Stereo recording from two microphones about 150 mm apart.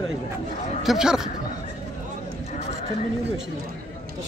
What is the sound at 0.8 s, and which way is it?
Speech, 5° right (ahead or behind).